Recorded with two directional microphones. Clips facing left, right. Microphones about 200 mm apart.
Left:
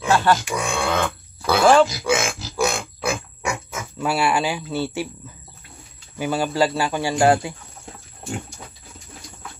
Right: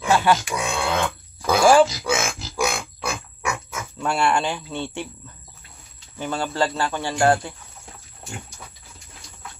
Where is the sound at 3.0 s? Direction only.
5° left (ahead or behind).